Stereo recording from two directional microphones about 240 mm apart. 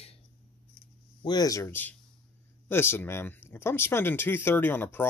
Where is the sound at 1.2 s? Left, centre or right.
Centre.